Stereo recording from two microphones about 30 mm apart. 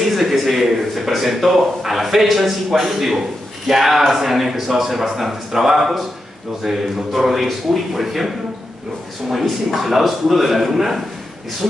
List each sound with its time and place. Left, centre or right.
0.1 s a man's voice: centre
9.3 s a man's voice: centre